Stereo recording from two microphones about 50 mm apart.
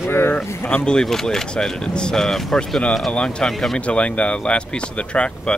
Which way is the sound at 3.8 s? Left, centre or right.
Left.